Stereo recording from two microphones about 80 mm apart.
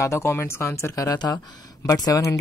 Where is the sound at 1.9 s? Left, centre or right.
Left.